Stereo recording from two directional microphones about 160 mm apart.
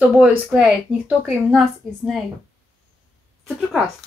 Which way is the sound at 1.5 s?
Centre (ahead or behind).